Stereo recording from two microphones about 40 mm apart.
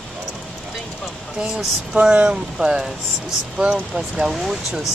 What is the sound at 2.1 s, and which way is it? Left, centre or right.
Speech, right.